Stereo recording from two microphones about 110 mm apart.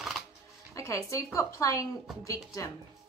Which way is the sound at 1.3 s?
30° left (ahead or behind).